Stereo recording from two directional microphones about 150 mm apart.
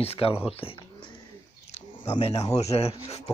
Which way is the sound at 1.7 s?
45° left (ahead or behind).